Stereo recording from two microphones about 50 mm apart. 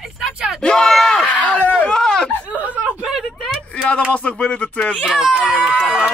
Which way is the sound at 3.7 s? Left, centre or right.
Left.